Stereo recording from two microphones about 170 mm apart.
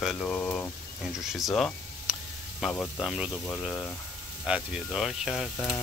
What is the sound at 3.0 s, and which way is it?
Speech, 5° right (ahead or behind).